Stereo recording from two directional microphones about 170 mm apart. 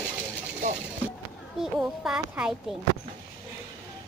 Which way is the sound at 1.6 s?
5° right (ahead or behind).